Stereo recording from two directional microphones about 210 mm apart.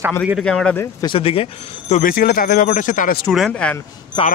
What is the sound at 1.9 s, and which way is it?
Speech, 40° left (ahead or behind).